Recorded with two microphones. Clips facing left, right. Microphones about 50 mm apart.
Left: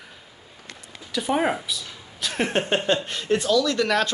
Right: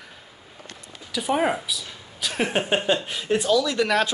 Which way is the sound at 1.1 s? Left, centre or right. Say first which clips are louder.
Even; centre.